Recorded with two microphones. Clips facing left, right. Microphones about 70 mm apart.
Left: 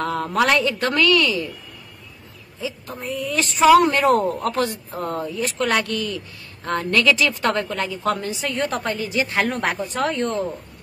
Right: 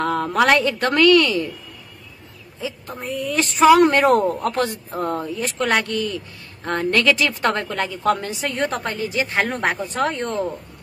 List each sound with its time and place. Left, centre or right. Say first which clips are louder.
0.0 s a woman's voice: right 2 dB; right
2.6 s a woman's voice: even; right
5.4 s a woman's voice: even; right
8.5 s a woman's voice: even; right